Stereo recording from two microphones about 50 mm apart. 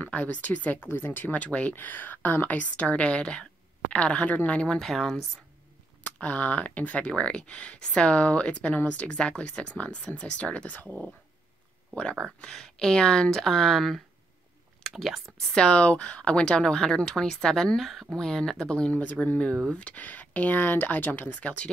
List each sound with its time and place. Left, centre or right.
0.0 s speech: left
0.8 s speech: left
4.7 s speech: centre
6.2 s speech: left
11.9 s speech: centre
15.5 s speech: left